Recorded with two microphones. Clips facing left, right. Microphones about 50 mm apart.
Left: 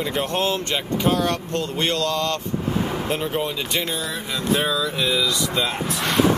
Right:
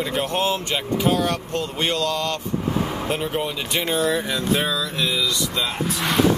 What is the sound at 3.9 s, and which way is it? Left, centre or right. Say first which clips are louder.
Speech: right 7 dB; right.